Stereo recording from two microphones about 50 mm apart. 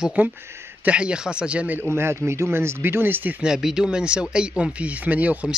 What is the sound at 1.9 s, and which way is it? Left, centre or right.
Speech, right.